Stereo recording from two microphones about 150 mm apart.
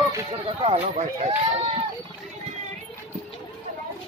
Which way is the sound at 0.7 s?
45° right (ahead or behind).